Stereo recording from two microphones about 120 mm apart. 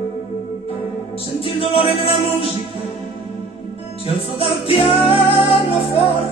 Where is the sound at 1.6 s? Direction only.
50° left (ahead or behind).